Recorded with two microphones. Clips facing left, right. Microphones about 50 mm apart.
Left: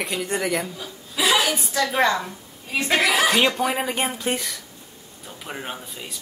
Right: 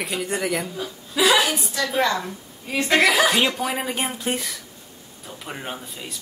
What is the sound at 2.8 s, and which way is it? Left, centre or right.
Speech, centre.